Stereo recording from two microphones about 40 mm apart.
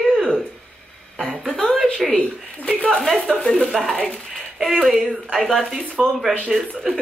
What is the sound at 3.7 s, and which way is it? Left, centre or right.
Speech, centre.